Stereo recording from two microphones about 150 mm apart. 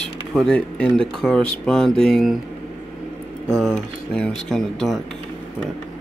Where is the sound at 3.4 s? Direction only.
5° left (ahead or behind).